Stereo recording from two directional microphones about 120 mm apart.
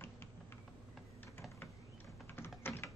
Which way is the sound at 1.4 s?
20° left (ahead or behind).